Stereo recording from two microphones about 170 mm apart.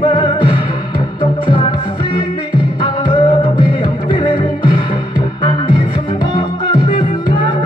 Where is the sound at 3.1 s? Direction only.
30° left (ahead or behind).